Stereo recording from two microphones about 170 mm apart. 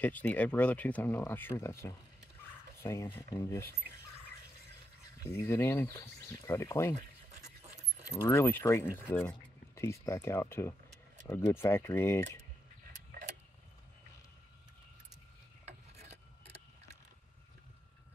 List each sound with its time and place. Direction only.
0.0 s speech: 10° left (ahead or behind)
5.2 s speech: 15° left (ahead or behind)
8.2 s speech: 15° left (ahead or behind)
13.1 s vehicle: 80° right